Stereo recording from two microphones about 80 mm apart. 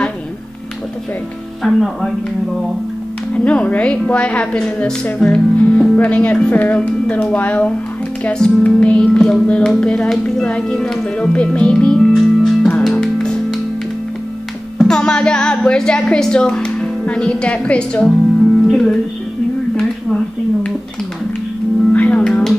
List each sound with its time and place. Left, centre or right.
1.6 s speech: centre
3.3 s a woman's voice: centre
12.9 s music: centre
14.8 s speech: centre
21.9 s music: centre
22.2 s music: centre